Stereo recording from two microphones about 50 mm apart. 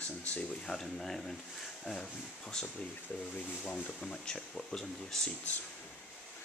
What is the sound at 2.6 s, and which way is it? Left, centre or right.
Speech, centre.